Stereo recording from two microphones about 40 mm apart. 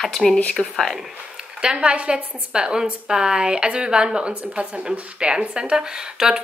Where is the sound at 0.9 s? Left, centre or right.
Centre.